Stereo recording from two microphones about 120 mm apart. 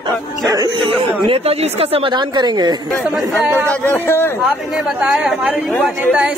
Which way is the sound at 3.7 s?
15° left (ahead or behind).